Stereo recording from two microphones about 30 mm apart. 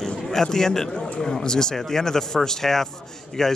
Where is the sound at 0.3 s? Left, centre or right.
Centre.